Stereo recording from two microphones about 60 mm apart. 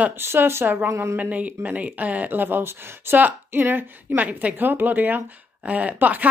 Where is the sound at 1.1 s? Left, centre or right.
Right.